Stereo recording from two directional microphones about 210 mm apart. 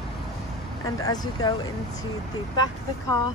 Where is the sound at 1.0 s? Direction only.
20° left (ahead or behind).